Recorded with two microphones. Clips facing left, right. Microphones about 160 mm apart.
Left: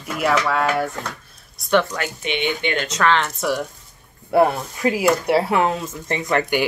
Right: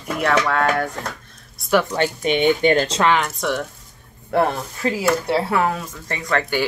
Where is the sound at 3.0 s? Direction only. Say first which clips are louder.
Right 1 dB; 10° right (ahead or behind).